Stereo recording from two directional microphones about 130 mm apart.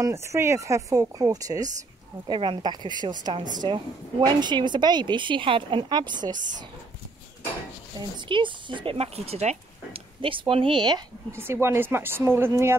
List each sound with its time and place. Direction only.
0.0 s speech: 20° right (ahead or behind)
2.2 s speech: 40° right (ahead or behind)
8.0 s speech: 30° right (ahead or behind)
11.3 s speech: 20° right (ahead or behind)